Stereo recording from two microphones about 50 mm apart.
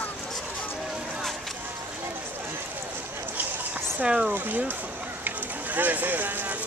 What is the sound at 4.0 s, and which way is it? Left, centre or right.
Speech, centre.